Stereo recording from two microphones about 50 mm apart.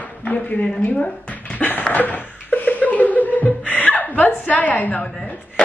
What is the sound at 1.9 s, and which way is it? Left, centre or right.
Chuckle, left.